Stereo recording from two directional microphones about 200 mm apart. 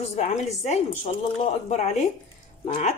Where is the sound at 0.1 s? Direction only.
35° left (ahead or behind).